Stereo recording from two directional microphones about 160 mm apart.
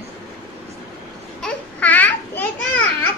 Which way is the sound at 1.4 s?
10° left (ahead or behind).